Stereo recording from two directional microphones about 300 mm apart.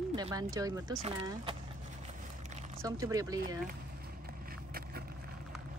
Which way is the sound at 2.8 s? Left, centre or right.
Centre.